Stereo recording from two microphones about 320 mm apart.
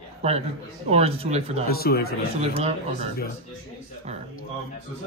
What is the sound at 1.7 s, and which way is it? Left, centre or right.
Speech, left.